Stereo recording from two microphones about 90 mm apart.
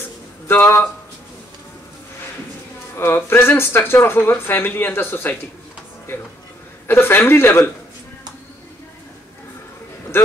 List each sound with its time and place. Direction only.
0.5 s speech: 25° left (ahead or behind)
3.0 s speech: 25° left (ahead or behind)
6.9 s speech: 25° left (ahead or behind)